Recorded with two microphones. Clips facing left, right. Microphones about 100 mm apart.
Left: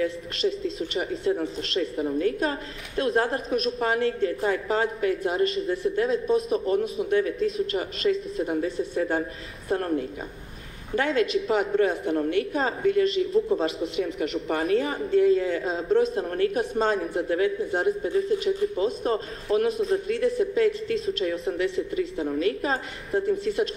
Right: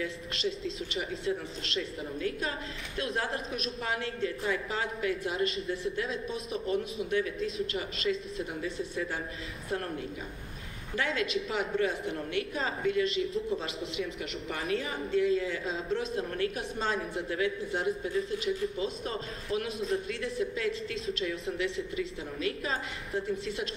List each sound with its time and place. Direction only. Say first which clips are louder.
0.4 s a woman's voice: left 8 dB; 45° left (ahead or behind)
11.4 s a woman's voice: left 8 dB; 45° left (ahead or behind)